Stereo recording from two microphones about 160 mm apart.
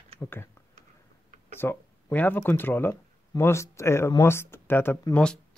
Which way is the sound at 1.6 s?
10° left (ahead or behind).